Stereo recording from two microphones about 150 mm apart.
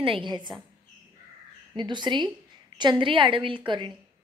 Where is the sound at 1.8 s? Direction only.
30° right (ahead or behind).